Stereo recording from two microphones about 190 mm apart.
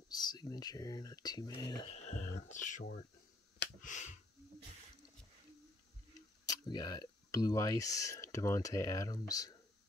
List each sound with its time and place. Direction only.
0.1 s speech: 20° left (ahead or behind)
1.9 s speech: 35° left (ahead or behind)
3.8 s finger snapping: 40° left (ahead or behind)
6.4 s speech: 20° left (ahead or behind)